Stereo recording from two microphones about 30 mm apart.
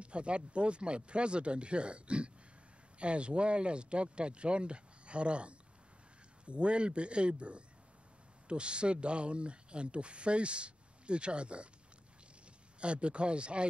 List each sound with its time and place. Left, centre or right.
0.0 s speech: right
12.8 s speech: right